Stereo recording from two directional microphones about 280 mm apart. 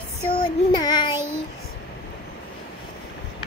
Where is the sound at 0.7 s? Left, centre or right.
Centre.